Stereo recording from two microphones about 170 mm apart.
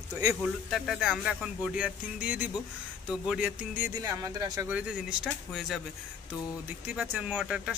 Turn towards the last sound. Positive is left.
turn(degrees=-5)  # may be behind; listen again after turning